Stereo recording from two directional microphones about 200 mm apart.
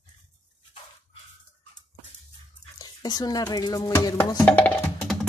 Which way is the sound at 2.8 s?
20° left (ahead or behind).